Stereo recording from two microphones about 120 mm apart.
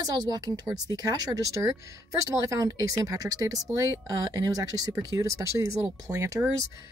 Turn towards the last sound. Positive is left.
turn(degrees=-25)  # may be behind; listen again after turning